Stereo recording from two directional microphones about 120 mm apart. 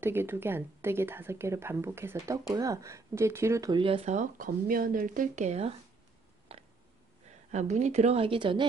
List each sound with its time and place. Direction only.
0.0 s speech: 20° right (ahead or behind)
3.7 s speech: 45° right (ahead or behind)
5.0 s speech: 85° right; by 5.8 s 65° right (ahead or behind)
6.5 s a sound: 50° right (ahead or behind)
7.5 s speech: 75° right (ahead or behind); by 8.6 s 45° right (ahead or behind)